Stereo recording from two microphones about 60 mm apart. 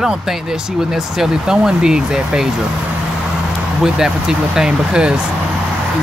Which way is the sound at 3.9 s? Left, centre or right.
Centre.